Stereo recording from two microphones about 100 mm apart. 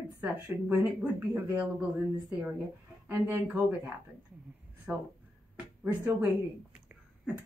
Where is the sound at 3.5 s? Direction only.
20° right (ahead or behind).